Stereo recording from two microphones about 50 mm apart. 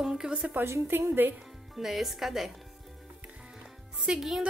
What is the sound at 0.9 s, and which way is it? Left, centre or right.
Speech, right.